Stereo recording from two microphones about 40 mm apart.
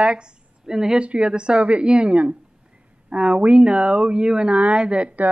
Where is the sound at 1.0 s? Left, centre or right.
Right.